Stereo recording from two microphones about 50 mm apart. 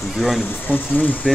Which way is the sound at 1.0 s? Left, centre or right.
Left.